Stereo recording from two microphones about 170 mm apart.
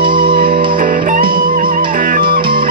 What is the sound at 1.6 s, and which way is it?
Music, 55° right (ahead or behind).